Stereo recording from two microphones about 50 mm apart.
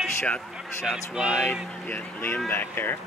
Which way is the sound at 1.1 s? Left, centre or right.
Centre.